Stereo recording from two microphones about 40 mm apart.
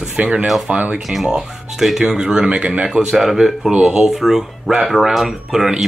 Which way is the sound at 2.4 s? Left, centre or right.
Right.